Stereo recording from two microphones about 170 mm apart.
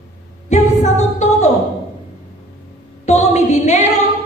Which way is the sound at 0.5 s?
40° left (ahead or behind).